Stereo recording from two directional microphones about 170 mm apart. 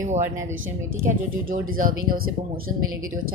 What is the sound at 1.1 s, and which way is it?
Speech, 55° right (ahead or behind).